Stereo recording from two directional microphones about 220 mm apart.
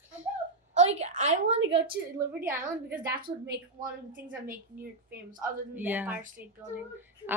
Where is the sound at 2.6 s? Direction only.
40° right (ahead or behind).